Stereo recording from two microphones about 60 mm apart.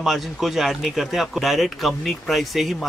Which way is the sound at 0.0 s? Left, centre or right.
Centre.